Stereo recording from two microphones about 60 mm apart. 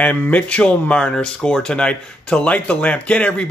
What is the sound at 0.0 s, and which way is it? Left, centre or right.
A man's voice, left.